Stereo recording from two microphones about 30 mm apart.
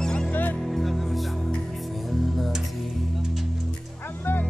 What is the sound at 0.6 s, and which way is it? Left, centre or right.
Music, centre.